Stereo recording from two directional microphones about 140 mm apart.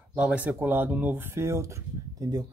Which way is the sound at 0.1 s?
10° right (ahead or behind).